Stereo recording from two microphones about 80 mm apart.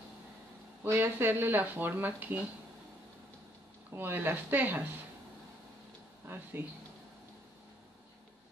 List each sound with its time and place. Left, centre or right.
0.8 s speech: right
3.9 s speech: right
6.2 s speech: right